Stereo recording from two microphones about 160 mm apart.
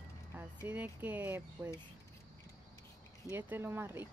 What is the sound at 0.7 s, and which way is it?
Speech, 10° right (ahead or behind).